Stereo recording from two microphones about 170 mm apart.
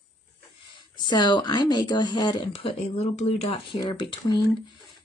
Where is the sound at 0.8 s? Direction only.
25° left (ahead or behind).